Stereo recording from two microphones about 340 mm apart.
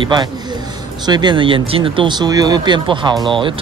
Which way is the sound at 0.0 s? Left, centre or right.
Centre.